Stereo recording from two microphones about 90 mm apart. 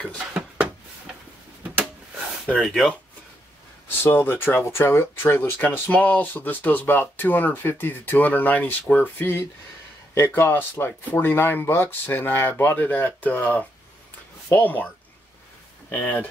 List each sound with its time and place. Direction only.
0.3 s a sound: 15° right (ahead or behind)
2.6 s speech: centre (ahead or behind)
4.0 s speech: 25° left (ahead or behind)